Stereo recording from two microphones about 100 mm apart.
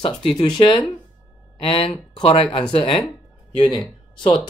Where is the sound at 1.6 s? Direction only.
65° left (ahead or behind).